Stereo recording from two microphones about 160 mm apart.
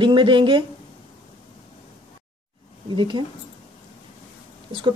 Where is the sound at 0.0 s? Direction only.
30° right (ahead or behind).